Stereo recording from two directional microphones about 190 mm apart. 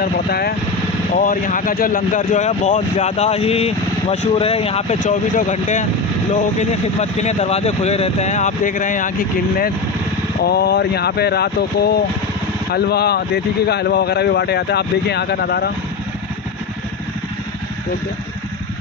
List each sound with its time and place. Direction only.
0.0 s speech: 55° left (ahead or behind)
1.1 s speech: 45° left (ahead or behind)
10.4 s speech: 55° left (ahead or behind)